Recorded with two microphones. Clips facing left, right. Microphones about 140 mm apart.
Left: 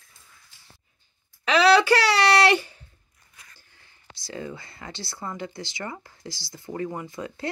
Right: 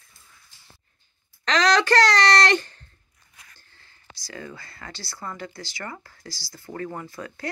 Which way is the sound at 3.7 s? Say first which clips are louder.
Right 1 dB; 25° left (ahead or behind).